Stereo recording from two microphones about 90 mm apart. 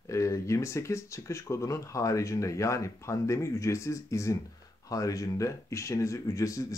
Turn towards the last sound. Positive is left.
turn(degrees=35)  # may be behind; listen again after turning